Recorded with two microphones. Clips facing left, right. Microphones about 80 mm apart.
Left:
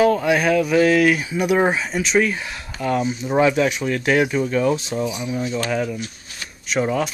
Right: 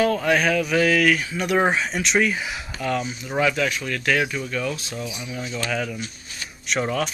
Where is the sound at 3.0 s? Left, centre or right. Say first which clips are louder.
Left 9 dB; left.